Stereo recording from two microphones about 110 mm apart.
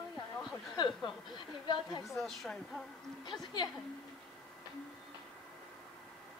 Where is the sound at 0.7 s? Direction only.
45° left (ahead or behind).